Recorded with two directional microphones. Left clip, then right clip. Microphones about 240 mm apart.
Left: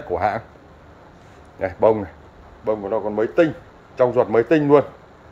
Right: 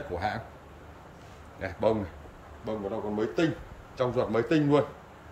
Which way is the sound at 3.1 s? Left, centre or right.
Centre.